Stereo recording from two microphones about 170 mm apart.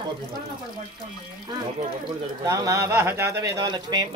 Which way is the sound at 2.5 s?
15° right (ahead or behind).